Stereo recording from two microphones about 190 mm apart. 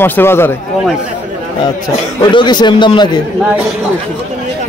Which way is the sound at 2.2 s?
25° left (ahead or behind).